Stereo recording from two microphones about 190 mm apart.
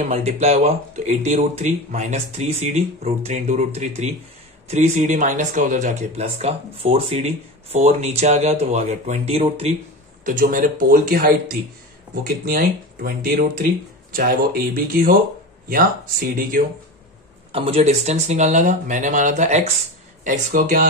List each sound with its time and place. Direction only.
0.0 s speech: 35° right (ahead or behind)
10.2 s speech: 45° right (ahead or behind)
17.5 s speech: 30° right (ahead or behind)